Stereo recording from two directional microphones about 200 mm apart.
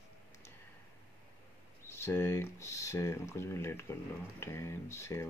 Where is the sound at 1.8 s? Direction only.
10° left (ahead or behind).